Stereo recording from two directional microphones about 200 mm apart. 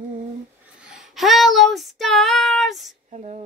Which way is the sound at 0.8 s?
Centre (ahead or behind).